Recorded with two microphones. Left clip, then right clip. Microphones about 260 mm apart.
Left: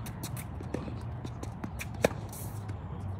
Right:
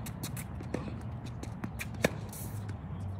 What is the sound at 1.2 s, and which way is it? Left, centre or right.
Shuffle, centre.